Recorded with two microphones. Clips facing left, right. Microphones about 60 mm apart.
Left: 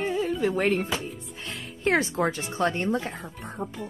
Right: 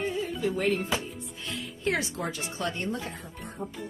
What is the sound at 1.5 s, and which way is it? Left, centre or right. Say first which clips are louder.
Speech: left 5 dB; left.